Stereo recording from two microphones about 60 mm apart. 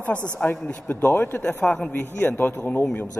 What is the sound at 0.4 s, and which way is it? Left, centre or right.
Speech, left.